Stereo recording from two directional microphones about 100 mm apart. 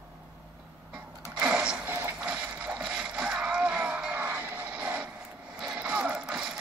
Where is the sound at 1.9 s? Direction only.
25° right (ahead or behind).